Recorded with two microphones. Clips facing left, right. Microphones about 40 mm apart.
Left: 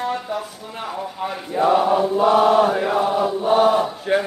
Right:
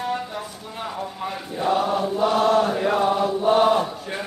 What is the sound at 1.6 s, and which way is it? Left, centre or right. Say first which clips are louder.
Mantra: left 5 dB; centre.